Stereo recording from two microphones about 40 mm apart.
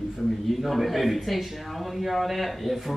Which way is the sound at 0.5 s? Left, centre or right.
Centre.